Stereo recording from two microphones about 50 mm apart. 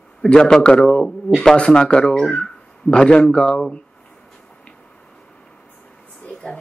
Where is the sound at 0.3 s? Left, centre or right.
Centre.